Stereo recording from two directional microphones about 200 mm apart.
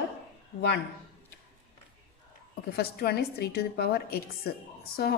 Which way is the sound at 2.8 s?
50° left (ahead or behind).